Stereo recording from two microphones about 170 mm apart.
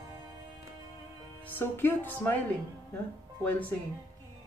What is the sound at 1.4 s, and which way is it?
Speech, 10° left (ahead or behind).